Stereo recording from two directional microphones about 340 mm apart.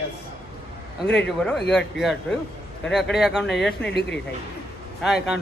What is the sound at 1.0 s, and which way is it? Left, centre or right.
Speech, left.